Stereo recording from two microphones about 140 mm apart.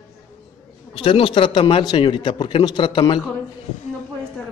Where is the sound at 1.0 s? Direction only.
40° left (ahead or behind).